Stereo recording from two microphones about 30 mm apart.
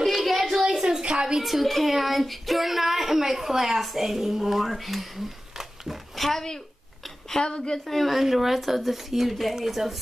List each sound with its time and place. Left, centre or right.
0.0 s a sound: centre
0.7 s a sound: centre
1.4 s a woman's voice: centre
6.1 s speech: centre
7.4 s a woman's voice: left
7.7 s a woman's voice: centre
8.1 s a woman's voice: centre